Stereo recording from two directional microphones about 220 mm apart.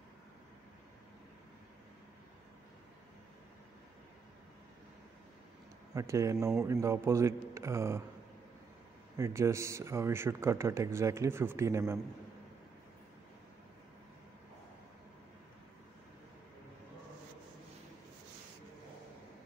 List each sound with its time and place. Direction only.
5.9 s a man's voice: 15° right (ahead or behind)
9.1 s a man's voice: 15° right (ahead or behind)